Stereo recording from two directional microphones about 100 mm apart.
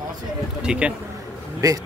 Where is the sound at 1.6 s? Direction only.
40° right (ahead or behind).